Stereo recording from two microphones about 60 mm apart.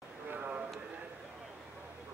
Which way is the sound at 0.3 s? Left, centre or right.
Right.